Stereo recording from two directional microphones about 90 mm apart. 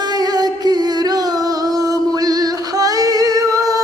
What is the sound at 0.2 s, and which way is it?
Music, 50° right (ahead or behind).